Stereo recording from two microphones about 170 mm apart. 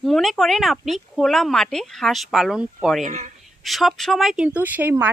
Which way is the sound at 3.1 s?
45° right (ahead or behind).